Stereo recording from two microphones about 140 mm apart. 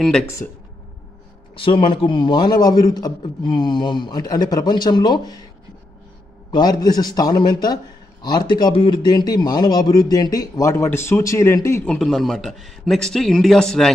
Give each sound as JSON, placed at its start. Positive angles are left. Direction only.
{"t": 1.5, "sound": "a man's voice", "side_deg": 40}
{"t": 6.5, "sound": "a man's voice", "side_deg": 30}
{"t": 11.8, "sound": "a man's voice", "side_deg": 5}